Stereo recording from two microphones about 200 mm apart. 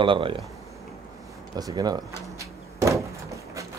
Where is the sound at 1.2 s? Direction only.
20° right (ahead or behind).